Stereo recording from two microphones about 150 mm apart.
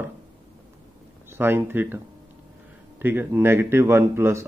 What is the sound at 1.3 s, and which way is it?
Speech, 15° right (ahead or behind).